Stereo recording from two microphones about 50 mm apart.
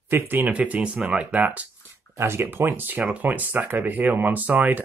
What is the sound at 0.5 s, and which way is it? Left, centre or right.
Speech, right.